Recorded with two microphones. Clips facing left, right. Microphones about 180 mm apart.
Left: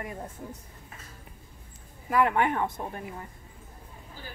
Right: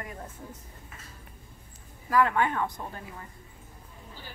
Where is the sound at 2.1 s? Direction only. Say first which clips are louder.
Even; 20° left (ahead or behind).